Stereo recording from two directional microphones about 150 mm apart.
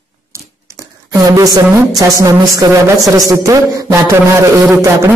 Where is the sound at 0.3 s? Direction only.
20° right (ahead or behind).